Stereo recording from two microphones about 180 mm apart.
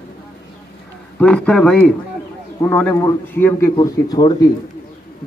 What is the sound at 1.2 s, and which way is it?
A man's voice, 5° left (ahead or behind).